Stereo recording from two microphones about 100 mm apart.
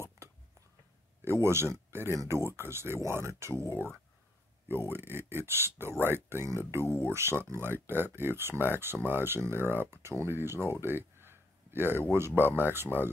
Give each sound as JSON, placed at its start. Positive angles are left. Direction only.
{"t": 1.2, "sound": "speech", "side_deg": -25}
{"t": 3.6, "sound": "speech", "side_deg": 25}
{"t": 4.6, "sound": "speech", "side_deg": -20}